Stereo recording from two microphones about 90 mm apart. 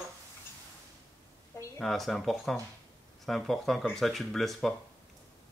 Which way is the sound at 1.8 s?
Centre (ahead or behind).